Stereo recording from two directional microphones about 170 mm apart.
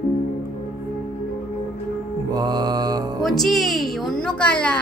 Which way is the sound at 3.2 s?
Centre (ahead or behind).